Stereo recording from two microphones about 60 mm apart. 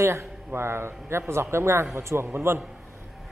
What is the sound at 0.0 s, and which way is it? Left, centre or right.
A man's voice, right.